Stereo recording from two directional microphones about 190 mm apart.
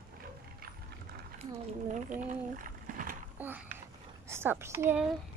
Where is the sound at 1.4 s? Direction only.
40° right (ahead or behind).